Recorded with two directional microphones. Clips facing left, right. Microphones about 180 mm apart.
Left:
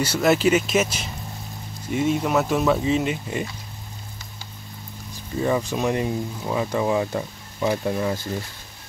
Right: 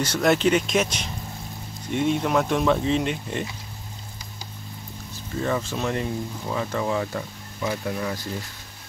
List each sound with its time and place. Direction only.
0.0 s speech: 5° left (ahead or behind)
5.1 s speech: 15° left (ahead or behind)